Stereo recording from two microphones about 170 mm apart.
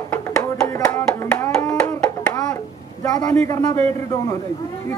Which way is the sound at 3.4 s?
15° left (ahead or behind).